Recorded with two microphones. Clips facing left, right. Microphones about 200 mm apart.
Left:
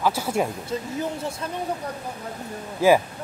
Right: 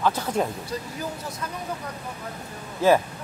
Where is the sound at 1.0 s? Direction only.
25° left (ahead or behind).